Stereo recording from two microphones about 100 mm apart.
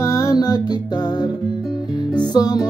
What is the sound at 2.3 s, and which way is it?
Music, 40° left (ahead or behind).